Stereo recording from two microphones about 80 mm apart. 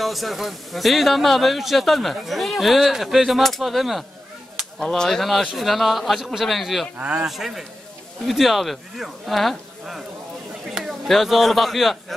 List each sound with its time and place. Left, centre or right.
0.0 s speech: centre
7.0 s speech: centre
7.2 s speech: centre